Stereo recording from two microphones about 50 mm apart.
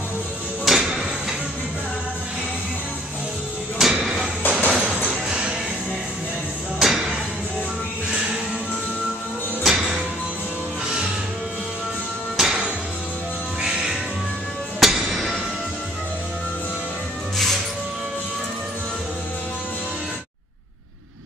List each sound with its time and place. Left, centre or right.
0.7 s a sound: centre
3.8 s a sound: centre
4.4 s music: left
4.6 s music: centre
6.8 s music: centre
9.6 s music: centre
12.4 s music: centre